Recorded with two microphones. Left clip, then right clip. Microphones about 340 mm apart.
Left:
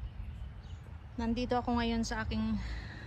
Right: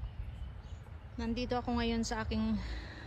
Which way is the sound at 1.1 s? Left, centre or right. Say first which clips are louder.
Left 3 dB; centre.